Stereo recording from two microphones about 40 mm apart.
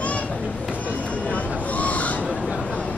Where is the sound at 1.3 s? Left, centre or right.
Left.